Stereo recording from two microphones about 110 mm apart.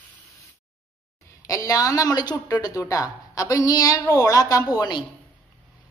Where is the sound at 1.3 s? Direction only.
30° left (ahead or behind).